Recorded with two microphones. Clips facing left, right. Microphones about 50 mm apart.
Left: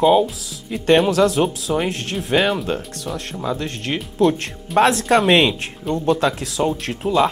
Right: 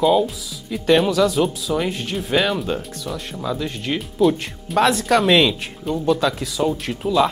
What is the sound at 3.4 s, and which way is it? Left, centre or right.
Speech, centre.